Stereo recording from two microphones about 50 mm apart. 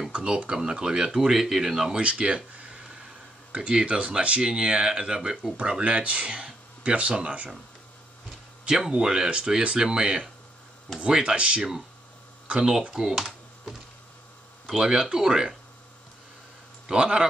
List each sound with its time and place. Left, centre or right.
0.1 s speech: right
2.0 s speech: right
8.6 s speech: centre
12.9 s speech: centre
16.8 s a man's voice: centre